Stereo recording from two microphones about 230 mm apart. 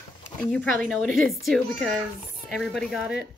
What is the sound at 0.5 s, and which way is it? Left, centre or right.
Speech, centre.